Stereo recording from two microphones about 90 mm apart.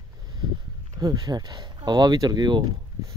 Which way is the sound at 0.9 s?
45° right (ahead or behind).